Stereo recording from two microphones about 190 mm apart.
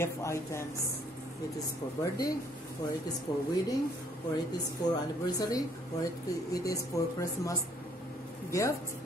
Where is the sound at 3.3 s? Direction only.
20° left (ahead or behind).